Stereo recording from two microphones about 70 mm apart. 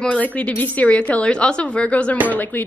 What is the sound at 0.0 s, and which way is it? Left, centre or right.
A woman's voice, centre.